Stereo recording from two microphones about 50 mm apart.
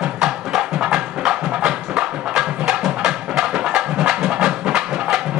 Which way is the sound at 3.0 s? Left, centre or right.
Centre.